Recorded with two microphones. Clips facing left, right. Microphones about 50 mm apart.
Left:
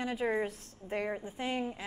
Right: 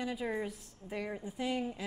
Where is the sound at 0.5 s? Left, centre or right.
Left.